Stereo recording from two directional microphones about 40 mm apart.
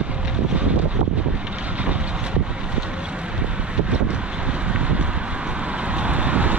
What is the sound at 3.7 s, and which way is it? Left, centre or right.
Vehicle, right.